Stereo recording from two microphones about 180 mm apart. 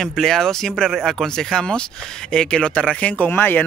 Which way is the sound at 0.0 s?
Centre (ahead or behind).